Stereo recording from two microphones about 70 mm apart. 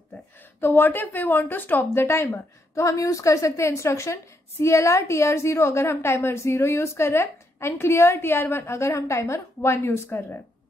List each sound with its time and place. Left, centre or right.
0.6 s a woman's voice: left